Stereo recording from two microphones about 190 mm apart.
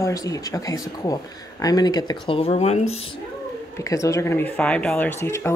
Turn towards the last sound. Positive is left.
turn(degrees=15)  # may be behind; listen again after turning